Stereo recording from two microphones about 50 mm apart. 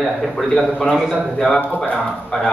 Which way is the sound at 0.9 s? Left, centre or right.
Centre.